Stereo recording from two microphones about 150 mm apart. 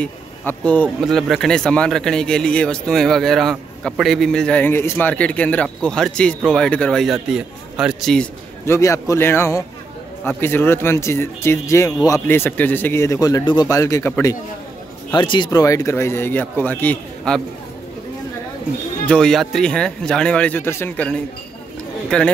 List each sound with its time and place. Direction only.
0.0 s speech: 10° left (ahead or behind)
8.6 s a man's voice: 20° left (ahead or behind)
15.1 s speech: 30° left (ahead or behind)
15.6 s speech: 20° left (ahead or behind)
19.0 s speech: 5° left (ahead or behind)